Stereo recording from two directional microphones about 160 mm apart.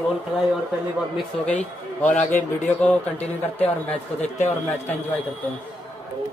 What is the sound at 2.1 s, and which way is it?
Speech, 50° left (ahead or behind).